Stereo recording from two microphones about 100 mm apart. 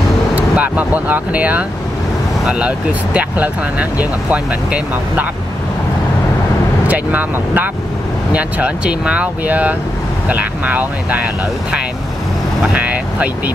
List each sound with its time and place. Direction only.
0.4 s speech: 15° right (ahead or behind)
6.9 s speech: 15° right (ahead or behind)
12.7 s speech: 15° right (ahead or behind)